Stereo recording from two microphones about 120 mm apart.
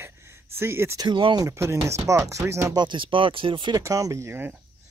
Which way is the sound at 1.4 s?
25° right (ahead or behind).